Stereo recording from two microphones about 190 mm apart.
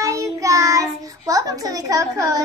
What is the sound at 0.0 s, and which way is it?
Child singing, 15° right (ahead or behind).